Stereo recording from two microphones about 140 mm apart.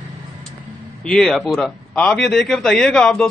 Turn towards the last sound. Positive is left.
turn(degrees=5)  # may be behind; listen again after turning